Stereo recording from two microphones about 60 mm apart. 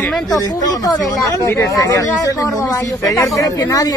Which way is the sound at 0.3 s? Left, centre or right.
Left.